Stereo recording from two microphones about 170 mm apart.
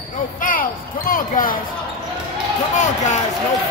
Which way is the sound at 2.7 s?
45° left (ahead or behind).